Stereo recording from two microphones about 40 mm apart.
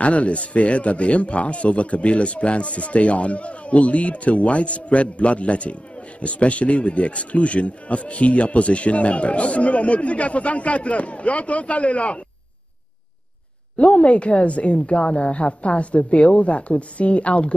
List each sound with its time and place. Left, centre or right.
0.0 s a man's voice: left
13.7 s a man's voice: left